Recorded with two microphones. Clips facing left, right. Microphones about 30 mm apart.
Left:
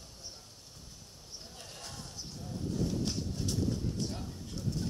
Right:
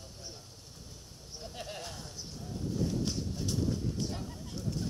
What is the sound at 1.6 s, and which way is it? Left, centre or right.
Bleat, right.